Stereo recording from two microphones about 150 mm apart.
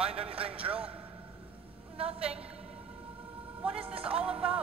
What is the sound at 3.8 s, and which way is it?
Music, 40° right (ahead or behind).